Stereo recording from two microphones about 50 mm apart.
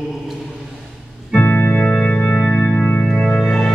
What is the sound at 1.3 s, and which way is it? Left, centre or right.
Organ, left.